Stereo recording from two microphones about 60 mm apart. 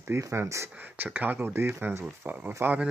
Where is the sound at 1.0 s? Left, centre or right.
Right.